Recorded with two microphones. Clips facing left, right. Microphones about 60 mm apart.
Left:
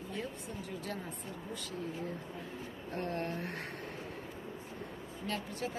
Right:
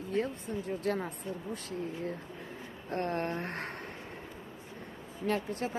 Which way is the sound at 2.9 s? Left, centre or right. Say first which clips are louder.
Right 5 dB; right.